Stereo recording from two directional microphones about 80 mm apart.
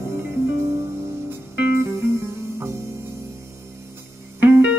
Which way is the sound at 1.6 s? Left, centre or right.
Right.